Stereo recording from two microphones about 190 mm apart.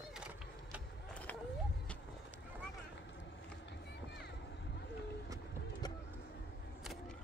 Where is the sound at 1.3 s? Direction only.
10° left (ahead or behind).